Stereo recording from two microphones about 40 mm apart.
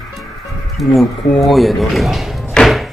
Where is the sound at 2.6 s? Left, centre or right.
Centre.